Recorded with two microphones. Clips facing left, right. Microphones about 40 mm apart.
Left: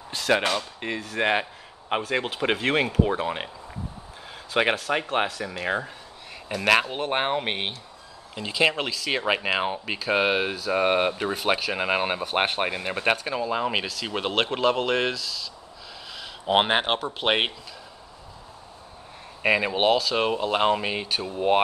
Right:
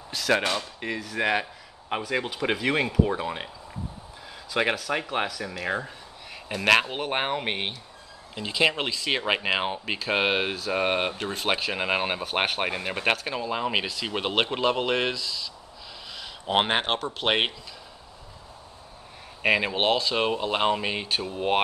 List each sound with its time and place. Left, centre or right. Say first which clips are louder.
0.7 s speech: left 1 dB; centre
2.4 s speech: left 2 dB; centre
4.6 s speech: left 2 dB; left
6.5 s speech: even; centre
7.2 s speech: left 2 dB; centre
11.4 s speech: left 1 dB; centre
16.2 s speech: left 3 dB; centre
19.4 s speech: left 2 dB; centre